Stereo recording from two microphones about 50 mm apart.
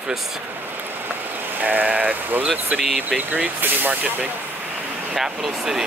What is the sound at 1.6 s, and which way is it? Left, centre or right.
Speech, right.